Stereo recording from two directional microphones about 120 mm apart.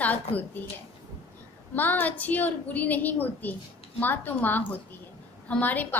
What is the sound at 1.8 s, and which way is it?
A woman's voice, 15° left (ahead or behind).